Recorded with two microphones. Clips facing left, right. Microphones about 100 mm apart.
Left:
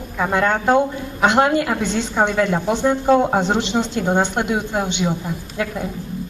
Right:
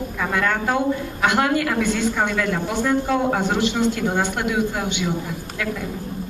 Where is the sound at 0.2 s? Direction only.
25° left (ahead or behind).